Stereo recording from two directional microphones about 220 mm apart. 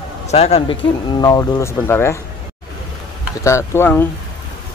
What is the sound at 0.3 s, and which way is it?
Speech, 30° left (ahead or behind).